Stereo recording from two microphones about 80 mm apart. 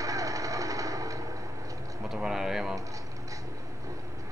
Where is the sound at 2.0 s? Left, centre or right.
Centre.